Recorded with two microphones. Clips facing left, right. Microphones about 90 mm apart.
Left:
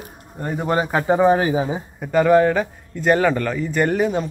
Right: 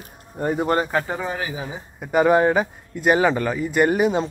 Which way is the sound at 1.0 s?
25° left (ahead or behind).